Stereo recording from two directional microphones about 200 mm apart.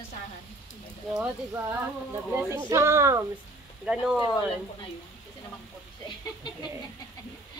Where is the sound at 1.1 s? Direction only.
10° right (ahead or behind).